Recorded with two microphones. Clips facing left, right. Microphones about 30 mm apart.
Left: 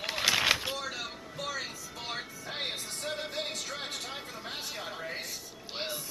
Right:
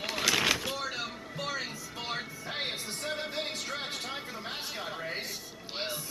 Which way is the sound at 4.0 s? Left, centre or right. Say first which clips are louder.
Right 2 dB; centre.